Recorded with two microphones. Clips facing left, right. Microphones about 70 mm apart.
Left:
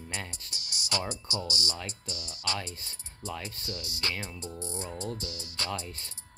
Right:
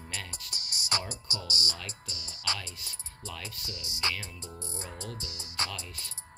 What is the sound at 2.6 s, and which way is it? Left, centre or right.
Speech, left.